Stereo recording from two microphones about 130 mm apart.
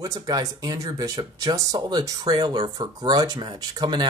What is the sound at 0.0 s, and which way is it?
Speech, 30° right (ahead or behind).